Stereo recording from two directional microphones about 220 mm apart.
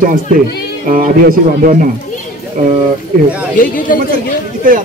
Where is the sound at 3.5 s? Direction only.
35° left (ahead or behind).